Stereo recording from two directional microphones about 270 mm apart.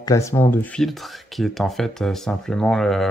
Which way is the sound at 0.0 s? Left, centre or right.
Centre.